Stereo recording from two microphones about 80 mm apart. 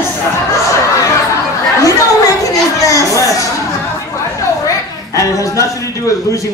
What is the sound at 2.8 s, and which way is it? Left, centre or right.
Speech, left.